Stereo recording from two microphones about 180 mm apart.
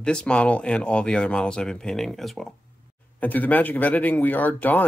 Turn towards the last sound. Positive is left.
turn(degrees=10)  # may be behind; listen again after turning